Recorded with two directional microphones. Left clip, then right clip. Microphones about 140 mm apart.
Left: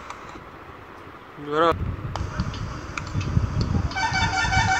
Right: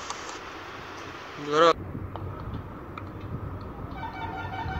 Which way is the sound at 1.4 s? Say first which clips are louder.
Even; 90° left.